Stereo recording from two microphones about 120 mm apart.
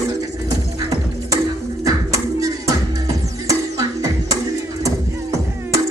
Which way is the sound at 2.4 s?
30° right (ahead or behind).